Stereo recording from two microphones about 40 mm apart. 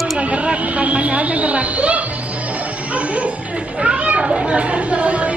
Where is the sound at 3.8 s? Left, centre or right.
Right.